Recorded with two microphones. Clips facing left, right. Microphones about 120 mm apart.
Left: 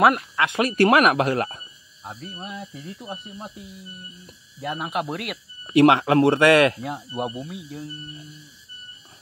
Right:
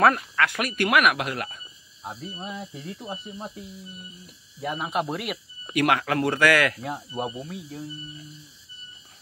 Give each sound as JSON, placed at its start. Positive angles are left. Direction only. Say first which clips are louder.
{"t": 0.4, "sound": "speech", "louder": "left 5 dB", "side_deg": 25}
{"t": 2.0, "sound": "speech", "louder": "right 1 dB", "side_deg": -10}
{"t": 5.8, "sound": "speech", "louder": "left 7 dB", "side_deg": 25}
{"t": 6.8, "sound": "speech", "louder": "left 2 dB", "side_deg": 5}